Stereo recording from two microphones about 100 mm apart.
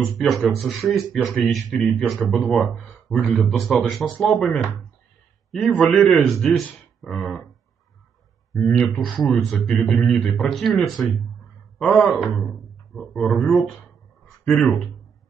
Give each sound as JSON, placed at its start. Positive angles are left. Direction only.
{"t": 0.0, "sound": "speech", "side_deg": 0}
{"t": 8.5, "sound": "speech", "side_deg": 5}
{"t": 12.4, "sound": "a sound", "side_deg": 0}
{"t": 14.4, "sound": "speech", "side_deg": 5}